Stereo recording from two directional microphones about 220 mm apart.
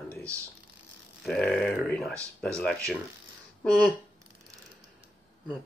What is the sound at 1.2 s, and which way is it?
Speech, centre (ahead or behind).